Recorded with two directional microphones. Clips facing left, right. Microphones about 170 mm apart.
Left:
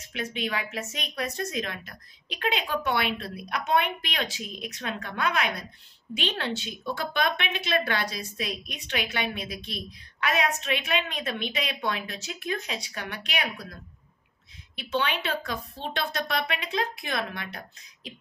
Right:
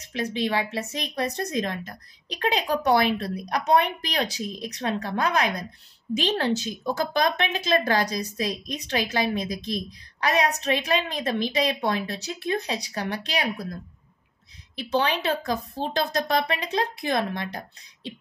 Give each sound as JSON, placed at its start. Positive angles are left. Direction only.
{"t": 0.0, "sound": "a woman's voice", "side_deg": -35}
{"t": 14.8, "sound": "a woman's voice", "side_deg": -35}